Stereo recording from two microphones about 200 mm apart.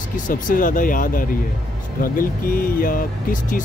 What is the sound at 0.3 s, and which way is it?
Speech, 40° left (ahead or behind).